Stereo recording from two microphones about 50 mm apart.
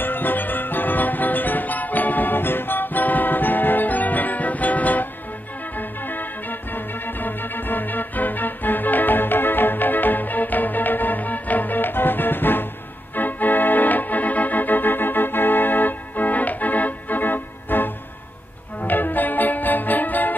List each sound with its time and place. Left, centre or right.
0.0 s music: left